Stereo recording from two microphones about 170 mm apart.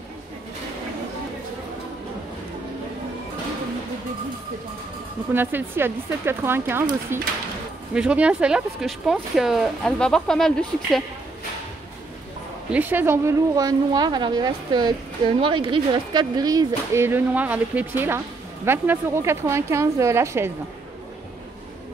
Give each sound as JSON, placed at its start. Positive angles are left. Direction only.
{"t": 5.3, "sound": "speech", "side_deg": -10}
{"t": 12.7, "sound": "speech", "side_deg": -10}